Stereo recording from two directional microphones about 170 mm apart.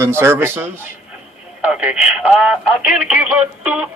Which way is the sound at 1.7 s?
5° right (ahead or behind).